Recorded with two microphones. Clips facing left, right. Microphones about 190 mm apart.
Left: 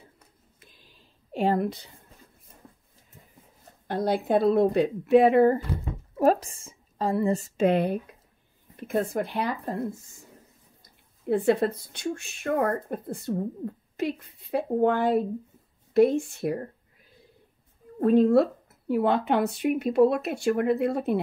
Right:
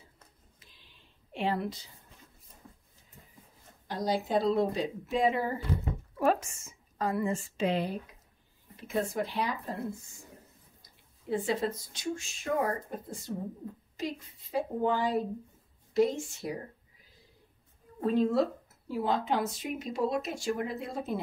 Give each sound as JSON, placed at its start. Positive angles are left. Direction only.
{"t": 0.6, "sound": "a sound", "side_deg": 50}
{"t": 3.8, "sound": "speech", "side_deg": 60}
{"t": 6.1, "sound": "a woman's voice", "side_deg": 40}
{"t": 10.8, "sound": "a woman's voice", "side_deg": 60}
{"t": 18.0, "sound": "speech", "side_deg": 60}